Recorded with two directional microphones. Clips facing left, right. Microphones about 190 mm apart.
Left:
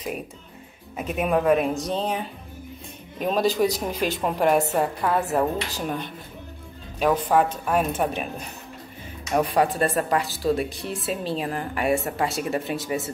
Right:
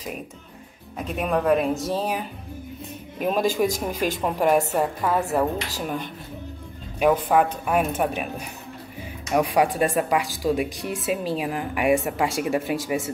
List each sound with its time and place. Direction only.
0.9 s a woman's voice: 5° left (ahead or behind)
3.9 s speech: 45° right (ahead or behind)
4.2 s a woman's voice: centre (ahead or behind)
7.2 s speech: 10° right (ahead or behind)